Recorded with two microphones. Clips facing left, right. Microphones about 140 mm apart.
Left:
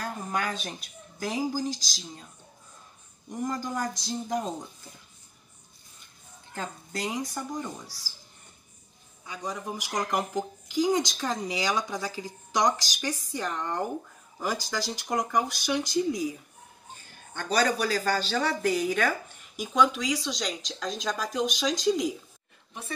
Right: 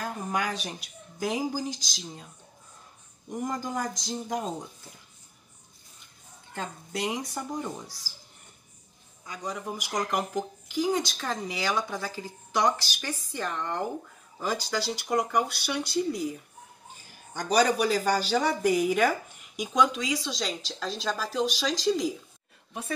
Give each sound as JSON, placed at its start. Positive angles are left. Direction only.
{"t": 0.0, "sound": "speech", "side_deg": -15}
{"t": 3.3, "sound": "speech", "side_deg": -20}
{"t": 6.5, "sound": "a woman's voice", "side_deg": 0}
{"t": 9.2, "sound": "a man's voice", "side_deg": 5}
{"t": 9.5, "sound": "speech", "side_deg": -5}
{"t": 10.7, "sound": "speech", "side_deg": 15}
{"t": 11.0, "sound": "speech", "side_deg": -5}
{"t": 11.2, "sound": "speech", "side_deg": 15}
{"t": 14.7, "sound": "speech", "side_deg": -10}
{"t": 15.6, "sound": "speech", "side_deg": 15}
{"t": 16.9, "sound": "speech", "side_deg": -5}
{"t": 19.6, "sound": "speech", "side_deg": 5}